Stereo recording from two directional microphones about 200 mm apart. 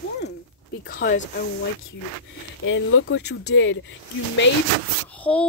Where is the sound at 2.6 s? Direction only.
70° left (ahead or behind).